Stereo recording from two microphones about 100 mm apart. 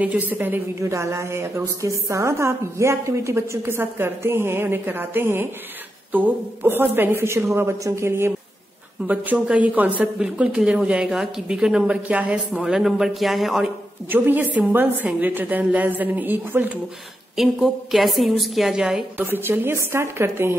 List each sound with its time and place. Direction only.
0.0 s a woman's voice: 15° right (ahead or behind)
9.0 s speech: 15° right (ahead or behind)
14.1 s a woman's voice: 20° right (ahead or behind)
17.4 s a woman's voice: centre (ahead or behind)
19.1 s a woman's voice: 20° right (ahead or behind)